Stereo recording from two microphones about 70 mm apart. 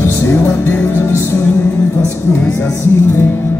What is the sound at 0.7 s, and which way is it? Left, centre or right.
Speech, left.